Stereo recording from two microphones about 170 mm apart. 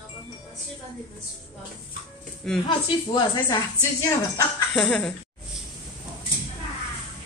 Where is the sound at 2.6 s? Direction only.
25° left (ahead or behind).